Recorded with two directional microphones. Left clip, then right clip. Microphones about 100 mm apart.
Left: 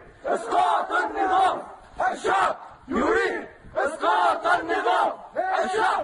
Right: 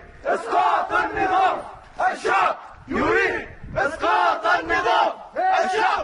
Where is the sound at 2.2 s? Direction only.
25° left (ahead or behind).